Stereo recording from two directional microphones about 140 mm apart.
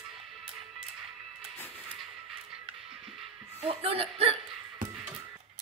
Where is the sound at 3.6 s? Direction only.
40° right (ahead or behind).